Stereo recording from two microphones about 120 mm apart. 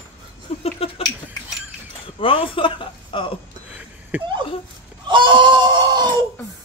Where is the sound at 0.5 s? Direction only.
60° left (ahead or behind).